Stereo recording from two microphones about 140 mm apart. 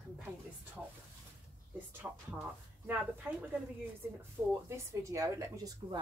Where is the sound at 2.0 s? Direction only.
15° right (ahead or behind).